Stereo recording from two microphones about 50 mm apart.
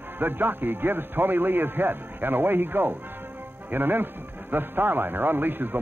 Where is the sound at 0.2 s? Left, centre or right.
Right.